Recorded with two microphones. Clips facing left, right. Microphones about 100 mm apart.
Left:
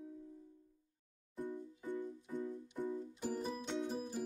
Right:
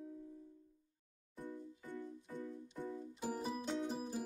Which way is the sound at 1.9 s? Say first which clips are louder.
Left 6 dB; 15° left (ahead or behind).